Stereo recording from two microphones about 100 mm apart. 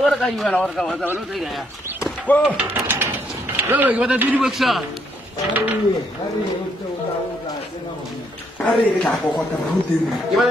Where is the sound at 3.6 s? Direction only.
15° right (ahead or behind).